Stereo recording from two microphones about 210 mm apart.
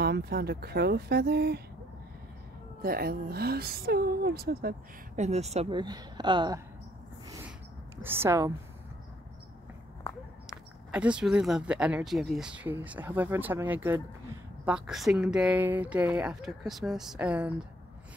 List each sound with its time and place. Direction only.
0.0 s a woman's voice: 50° right (ahead or behind)
2.8 s a woman's voice: 45° right (ahead or behind)
5.2 s speech: 30° right (ahead or behind)
8.0 s speech: 10° right (ahead or behind)
10.9 s speech: 5° right (ahead or behind)